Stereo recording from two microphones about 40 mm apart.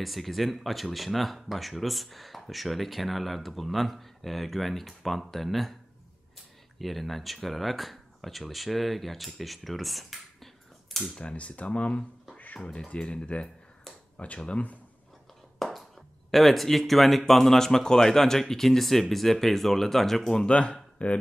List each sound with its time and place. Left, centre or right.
0.0 s speech: centre
6.8 s speech: centre
11.1 s speech: left
14.1 s speech: left
15.6 s speech: centre
20.4 s speech: left